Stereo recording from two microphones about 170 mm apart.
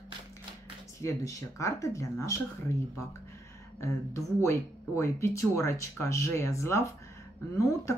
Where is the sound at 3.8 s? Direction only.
15° left (ahead or behind).